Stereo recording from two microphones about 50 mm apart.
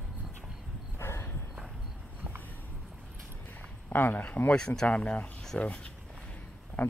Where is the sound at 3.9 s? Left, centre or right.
Left.